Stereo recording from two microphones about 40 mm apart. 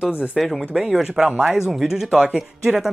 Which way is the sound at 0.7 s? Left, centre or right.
Centre.